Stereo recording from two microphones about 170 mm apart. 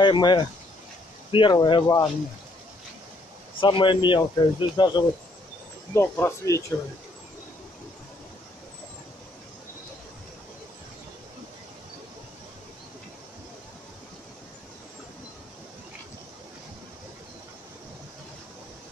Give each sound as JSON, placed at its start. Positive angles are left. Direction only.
{"t": 0.0, "sound": "speech", "side_deg": 25}
{"t": 3.6, "sound": "speech", "side_deg": 25}
{"t": 5.9, "sound": "speech", "side_deg": 15}